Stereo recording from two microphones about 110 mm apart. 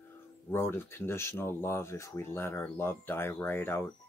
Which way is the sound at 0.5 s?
20° left (ahead or behind).